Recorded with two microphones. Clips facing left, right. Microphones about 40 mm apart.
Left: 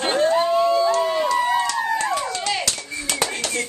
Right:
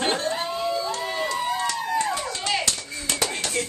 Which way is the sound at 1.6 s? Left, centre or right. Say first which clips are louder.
Left 3 dB; left.